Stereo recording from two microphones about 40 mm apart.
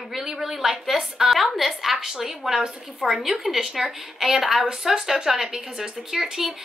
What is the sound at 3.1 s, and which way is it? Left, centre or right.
A woman's voice, centre.